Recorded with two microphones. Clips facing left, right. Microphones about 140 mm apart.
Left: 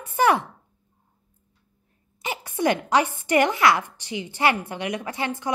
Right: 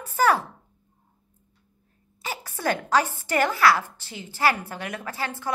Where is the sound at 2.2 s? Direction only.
20° left (ahead or behind).